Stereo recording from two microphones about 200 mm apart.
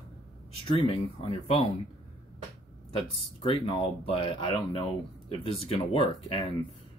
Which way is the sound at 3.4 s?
25° left (ahead or behind).